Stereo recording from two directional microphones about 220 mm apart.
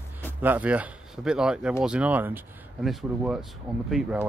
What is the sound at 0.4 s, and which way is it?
Speech, 5° right (ahead or behind).